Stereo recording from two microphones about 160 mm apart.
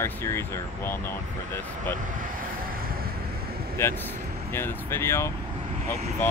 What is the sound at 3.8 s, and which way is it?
Speech, 15° left (ahead or behind).